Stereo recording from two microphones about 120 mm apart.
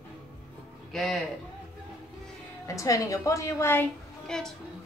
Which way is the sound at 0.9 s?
Centre (ahead or behind).